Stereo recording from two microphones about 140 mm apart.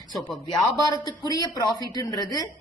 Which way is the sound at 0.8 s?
30° left (ahead or behind).